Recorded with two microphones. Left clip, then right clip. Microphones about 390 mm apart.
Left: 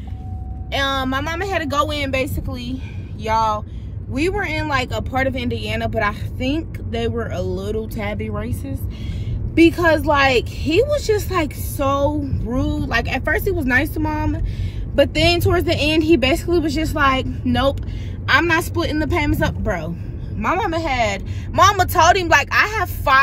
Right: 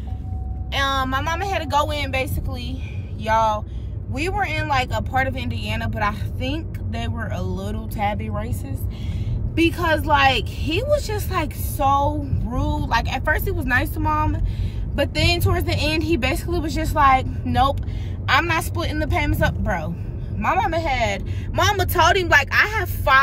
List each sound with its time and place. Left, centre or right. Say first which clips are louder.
0.7 s speech: left 1 dB; centre